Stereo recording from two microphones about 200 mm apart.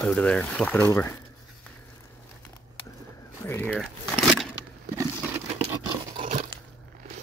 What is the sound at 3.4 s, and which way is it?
Speech, 10° left (ahead or behind).